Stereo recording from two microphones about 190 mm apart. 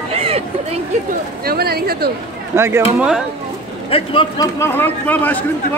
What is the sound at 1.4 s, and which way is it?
Speech, 55° right (ahead or behind).